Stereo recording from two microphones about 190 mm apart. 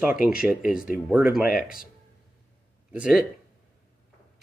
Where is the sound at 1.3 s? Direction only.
50° left (ahead or behind).